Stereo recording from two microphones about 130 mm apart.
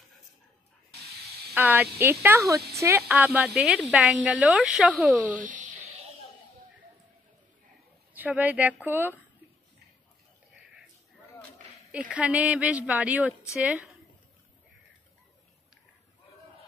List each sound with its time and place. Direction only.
1.5 s speech: 15° right (ahead or behind)
3.0 s speech: 5° right (ahead or behind)
8.1 s speech: 15° right (ahead or behind)
12.1 s speech: 10° right (ahead or behind)